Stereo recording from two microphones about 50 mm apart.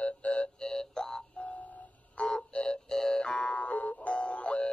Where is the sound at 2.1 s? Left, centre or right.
Left.